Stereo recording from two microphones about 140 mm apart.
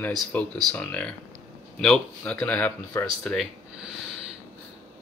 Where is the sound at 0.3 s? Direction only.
10° left (ahead or behind).